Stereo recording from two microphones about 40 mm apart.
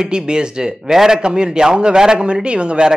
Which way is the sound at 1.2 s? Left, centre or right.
Right.